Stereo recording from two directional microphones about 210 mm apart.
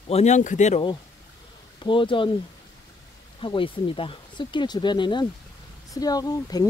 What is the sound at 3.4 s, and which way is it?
Speech, 25° left (ahead or behind).